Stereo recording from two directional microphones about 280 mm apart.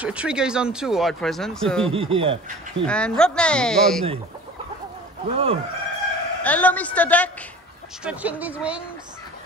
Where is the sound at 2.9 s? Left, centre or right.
Centre.